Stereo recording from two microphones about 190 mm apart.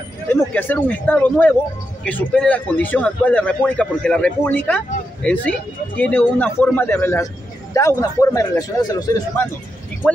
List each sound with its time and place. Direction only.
0.6 s a man's voice: 10° left (ahead or behind)